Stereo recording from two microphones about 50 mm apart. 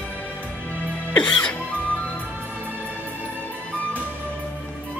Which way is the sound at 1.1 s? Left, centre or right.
Left.